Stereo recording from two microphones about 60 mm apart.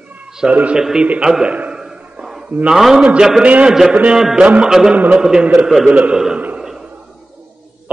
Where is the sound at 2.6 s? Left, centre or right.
Centre.